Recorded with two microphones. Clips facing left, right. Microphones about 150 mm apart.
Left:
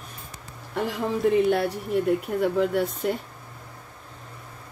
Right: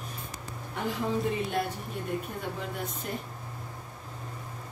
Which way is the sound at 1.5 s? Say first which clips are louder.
Left 9 dB; 80° left.